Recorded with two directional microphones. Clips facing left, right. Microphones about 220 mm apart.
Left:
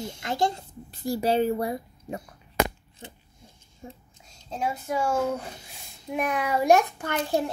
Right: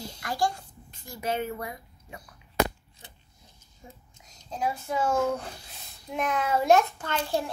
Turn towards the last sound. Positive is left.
turn(degrees=15)  # may be behind; listen again after turning